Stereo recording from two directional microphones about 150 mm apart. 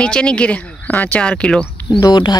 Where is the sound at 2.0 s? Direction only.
30° left (ahead or behind).